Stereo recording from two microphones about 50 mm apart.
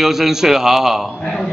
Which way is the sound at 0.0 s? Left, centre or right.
Centre.